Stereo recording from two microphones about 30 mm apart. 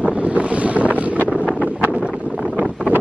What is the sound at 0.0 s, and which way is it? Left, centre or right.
Wind noise, right.